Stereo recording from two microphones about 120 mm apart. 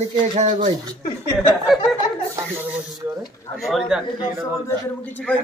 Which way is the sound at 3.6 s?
Centre (ahead or behind).